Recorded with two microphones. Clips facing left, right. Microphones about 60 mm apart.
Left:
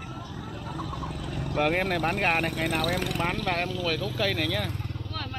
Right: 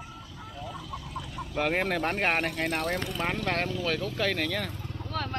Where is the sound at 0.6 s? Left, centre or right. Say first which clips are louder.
Left 3 dB; left.